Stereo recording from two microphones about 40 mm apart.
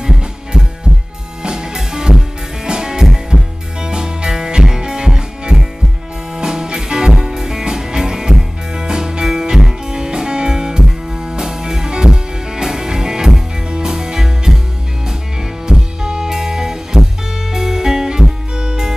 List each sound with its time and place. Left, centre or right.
0.0 s music: centre
15.6 s music: centre